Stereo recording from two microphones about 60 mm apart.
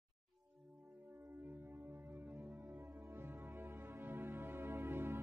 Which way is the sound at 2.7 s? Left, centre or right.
Right.